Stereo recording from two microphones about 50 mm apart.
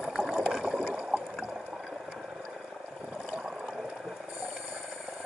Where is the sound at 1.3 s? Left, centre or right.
Centre.